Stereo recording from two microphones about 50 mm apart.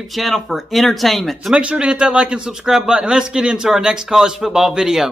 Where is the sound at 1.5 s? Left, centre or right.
Right; by 5.1 s centre.